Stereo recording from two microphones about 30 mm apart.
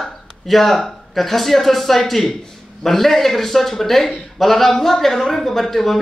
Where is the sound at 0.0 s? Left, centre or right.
Centre.